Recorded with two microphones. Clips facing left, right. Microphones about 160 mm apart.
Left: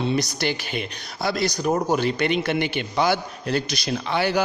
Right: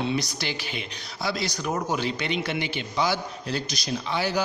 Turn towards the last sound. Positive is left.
turn(degrees=65)  # may be behind; listen again after turning